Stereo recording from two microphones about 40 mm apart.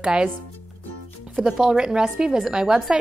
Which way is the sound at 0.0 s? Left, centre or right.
Right.